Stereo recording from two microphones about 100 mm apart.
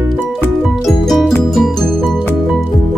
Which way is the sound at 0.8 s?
Centre (ahead or behind).